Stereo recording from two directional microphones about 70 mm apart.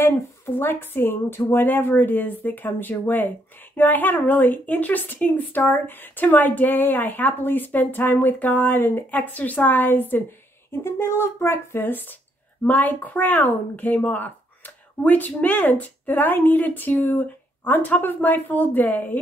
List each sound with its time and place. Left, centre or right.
0.6 s speech: left